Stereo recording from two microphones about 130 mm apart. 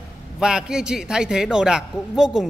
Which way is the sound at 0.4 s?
5° right (ahead or behind).